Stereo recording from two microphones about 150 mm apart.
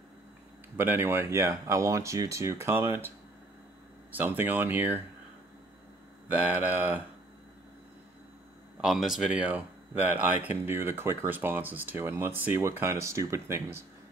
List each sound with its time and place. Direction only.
0.7 s speech: 15° right (ahead or behind)
4.1 s speech: 10° right (ahead or behind)
6.2 s speech: 10° right (ahead or behind)
8.8 s speech: centre (ahead or behind); by 13.8 s 15° right (ahead or behind)